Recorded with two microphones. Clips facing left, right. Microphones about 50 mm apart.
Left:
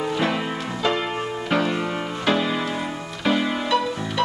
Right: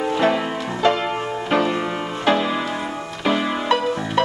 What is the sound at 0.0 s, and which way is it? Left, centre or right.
Music, centre.